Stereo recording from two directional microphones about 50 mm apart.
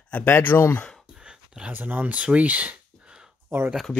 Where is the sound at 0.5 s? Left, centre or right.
Left.